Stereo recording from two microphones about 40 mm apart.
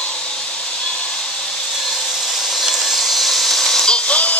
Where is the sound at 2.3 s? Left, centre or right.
Centre.